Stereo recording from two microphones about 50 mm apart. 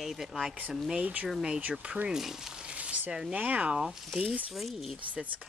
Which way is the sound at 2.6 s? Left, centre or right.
Right.